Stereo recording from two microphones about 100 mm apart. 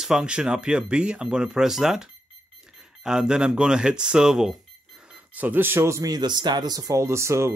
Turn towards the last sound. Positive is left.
turn(degrees=-30)  # may be behind; listen again after turning